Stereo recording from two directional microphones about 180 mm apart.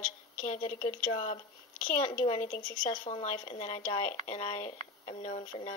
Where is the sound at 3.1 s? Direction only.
30° left (ahead or behind).